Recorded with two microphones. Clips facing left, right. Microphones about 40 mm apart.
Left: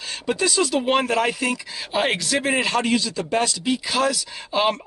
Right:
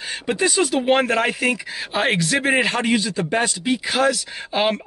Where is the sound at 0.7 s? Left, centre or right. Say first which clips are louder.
Right 3 dB; centre.